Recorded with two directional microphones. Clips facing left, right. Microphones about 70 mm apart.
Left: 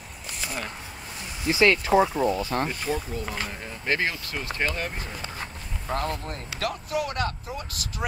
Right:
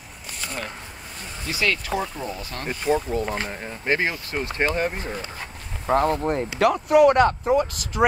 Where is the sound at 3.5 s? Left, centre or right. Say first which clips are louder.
Right 4 dB; right.